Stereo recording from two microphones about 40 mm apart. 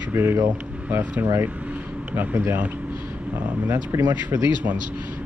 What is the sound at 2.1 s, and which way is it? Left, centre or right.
Speech, right.